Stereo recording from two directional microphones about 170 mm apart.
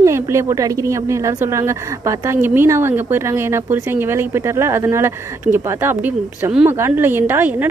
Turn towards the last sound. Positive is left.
turn(degrees=-10)  # may be behind; listen again after turning